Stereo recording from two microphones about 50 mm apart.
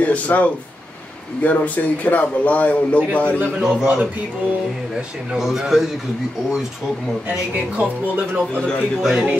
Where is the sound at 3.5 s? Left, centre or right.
Centre.